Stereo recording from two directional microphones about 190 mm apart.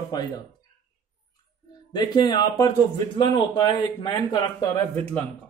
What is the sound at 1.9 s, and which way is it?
A man's voice, 20° left (ahead or behind).